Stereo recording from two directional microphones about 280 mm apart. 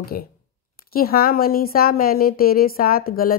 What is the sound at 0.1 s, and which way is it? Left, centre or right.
A woman's voice, left.